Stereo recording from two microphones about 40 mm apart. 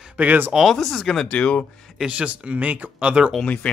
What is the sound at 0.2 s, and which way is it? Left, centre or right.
Speech, right.